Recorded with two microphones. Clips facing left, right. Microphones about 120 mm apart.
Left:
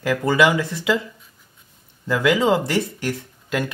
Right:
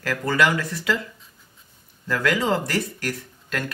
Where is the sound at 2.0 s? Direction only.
15° left (ahead or behind).